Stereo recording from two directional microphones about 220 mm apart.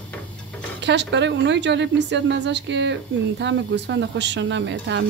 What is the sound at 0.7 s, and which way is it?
A woman's voice, 55° right (ahead or behind).